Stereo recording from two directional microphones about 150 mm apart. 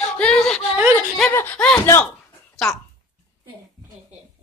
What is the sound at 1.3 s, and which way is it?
Speech, 15° left (ahead or behind).